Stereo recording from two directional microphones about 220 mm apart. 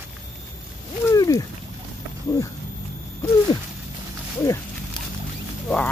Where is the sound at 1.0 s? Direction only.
15° left (ahead or behind).